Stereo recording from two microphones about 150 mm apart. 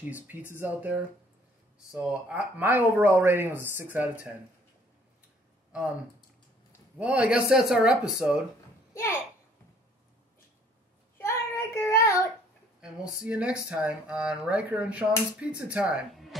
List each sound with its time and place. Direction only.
0.1 s speech: 10° right (ahead or behind)
2.0 s speech: 10° right (ahead or behind)
7.0 s speech: 10° right (ahead or behind)
8.9 s a child's voice: 20° left (ahead or behind)
11.1 s child singing: 15° left (ahead or behind)
12.8 s speech: 10° right (ahead or behind)